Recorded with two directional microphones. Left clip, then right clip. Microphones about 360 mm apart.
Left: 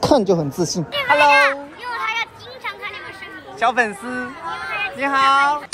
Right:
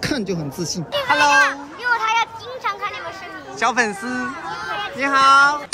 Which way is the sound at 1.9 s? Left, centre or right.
Right.